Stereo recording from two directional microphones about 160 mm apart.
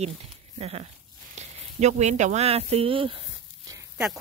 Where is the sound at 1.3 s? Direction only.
45° right (ahead or behind).